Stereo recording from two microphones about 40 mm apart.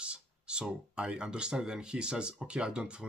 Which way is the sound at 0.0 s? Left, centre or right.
Right.